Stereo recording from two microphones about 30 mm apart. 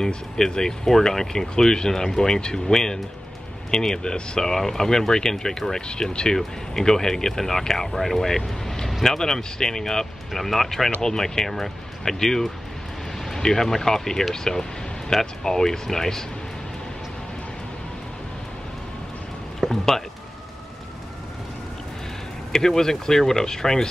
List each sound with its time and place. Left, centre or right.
0.5 s speech: left
0.8 s speech: centre
5.8 s speech: left; by 10.9 s centre
11.0 s speech: centre
19.7 s speech: centre
22.5 s speech: centre